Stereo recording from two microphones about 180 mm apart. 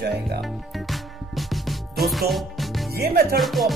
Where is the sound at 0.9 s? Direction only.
Centre (ahead or behind).